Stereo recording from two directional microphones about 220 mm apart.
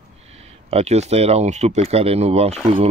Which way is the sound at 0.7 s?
30° right (ahead or behind).